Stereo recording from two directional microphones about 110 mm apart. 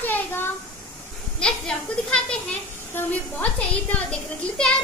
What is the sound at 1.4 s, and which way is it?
A woman's voice, 5° left (ahead or behind).